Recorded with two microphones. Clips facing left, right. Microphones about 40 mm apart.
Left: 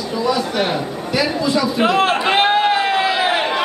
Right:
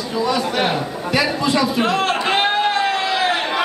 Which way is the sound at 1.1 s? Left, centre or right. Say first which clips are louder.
Even; right.